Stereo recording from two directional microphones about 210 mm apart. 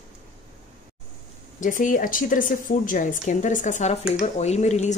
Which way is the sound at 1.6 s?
40° left (ahead or behind).